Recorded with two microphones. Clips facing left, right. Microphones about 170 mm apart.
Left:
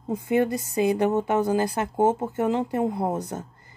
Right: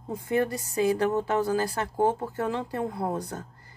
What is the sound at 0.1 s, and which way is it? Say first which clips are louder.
Speech: left 4 dB; 20° left (ahead or behind).